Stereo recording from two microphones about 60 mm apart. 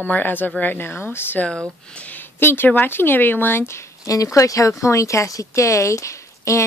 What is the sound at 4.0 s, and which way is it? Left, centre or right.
Speech, left.